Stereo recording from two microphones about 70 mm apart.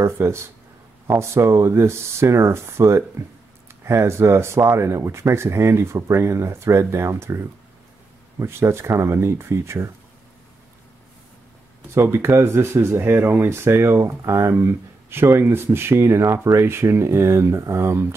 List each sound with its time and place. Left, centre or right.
0.0 s speech: right
11.9 s speech: right
16.6 s speech: right